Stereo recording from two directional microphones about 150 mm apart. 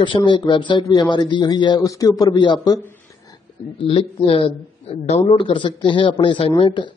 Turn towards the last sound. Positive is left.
turn(degrees=35)  # may be behind; listen again after turning